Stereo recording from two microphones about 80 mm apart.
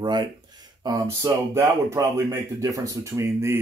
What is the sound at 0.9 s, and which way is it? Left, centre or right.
Speech, right.